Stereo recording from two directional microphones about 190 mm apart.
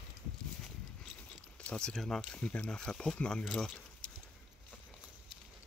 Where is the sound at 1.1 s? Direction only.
5° left (ahead or behind).